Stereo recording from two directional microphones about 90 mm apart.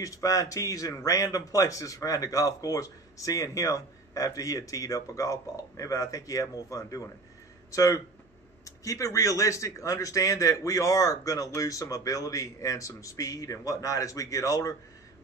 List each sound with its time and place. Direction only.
0.0 s a man's voice: 40° left (ahead or behind)